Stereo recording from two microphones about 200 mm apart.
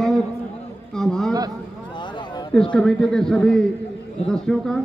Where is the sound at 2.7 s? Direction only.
5° left (ahead or behind).